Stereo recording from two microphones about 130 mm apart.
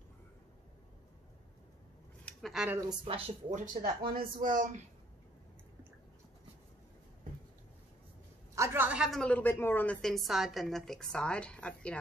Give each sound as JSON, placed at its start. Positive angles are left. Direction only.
{"t": 2.5, "sound": "a woman's voice", "side_deg": -5}
{"t": 2.9, "sound": "a woman's voice", "side_deg": -45}
{"t": 3.5, "sound": "speech", "side_deg": -90}
{"t": 8.5, "sound": "a sound", "side_deg": -15}
{"t": 9.2, "sound": "a woman's voice", "side_deg": 15}